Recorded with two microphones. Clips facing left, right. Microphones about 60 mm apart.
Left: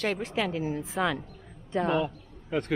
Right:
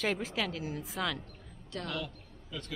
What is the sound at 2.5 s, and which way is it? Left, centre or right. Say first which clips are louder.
Speech: left 14 dB; left.